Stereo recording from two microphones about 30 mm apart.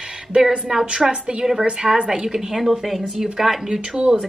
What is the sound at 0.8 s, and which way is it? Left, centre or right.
Speech, right.